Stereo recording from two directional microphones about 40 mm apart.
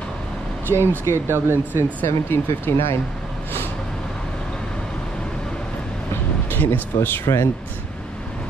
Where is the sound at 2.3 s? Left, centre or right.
Left.